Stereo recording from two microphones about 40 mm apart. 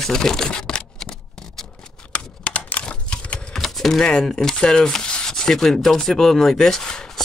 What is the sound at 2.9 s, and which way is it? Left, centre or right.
Typewriter, left.